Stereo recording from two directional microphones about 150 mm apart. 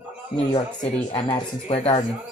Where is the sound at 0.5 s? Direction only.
30° left (ahead or behind).